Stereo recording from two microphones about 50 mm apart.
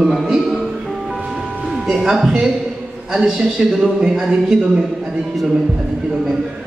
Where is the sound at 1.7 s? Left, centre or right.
Centre.